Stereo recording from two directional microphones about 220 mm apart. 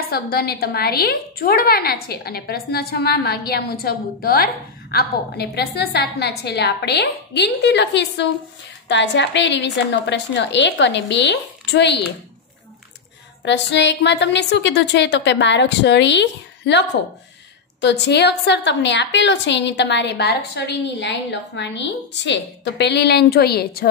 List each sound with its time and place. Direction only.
0.1 s a woman's voice: 45° left (ahead or behind)
13.4 s a woman's voice: 55° left (ahead or behind)